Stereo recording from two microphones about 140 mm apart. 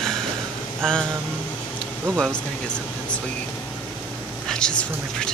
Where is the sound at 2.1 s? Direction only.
5° left (ahead or behind).